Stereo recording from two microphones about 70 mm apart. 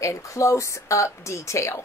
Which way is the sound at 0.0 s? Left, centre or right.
Left.